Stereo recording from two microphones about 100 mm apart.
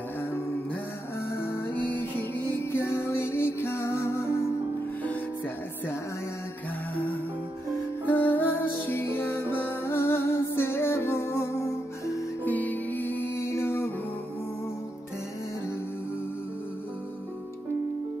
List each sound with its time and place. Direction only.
1.3 s music: 25° left (ahead or behind)
8.1 s music: 20° left (ahead or behind)
12.4 s music: 15° left (ahead or behind)